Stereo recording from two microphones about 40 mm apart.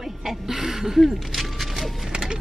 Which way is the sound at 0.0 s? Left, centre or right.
Centre.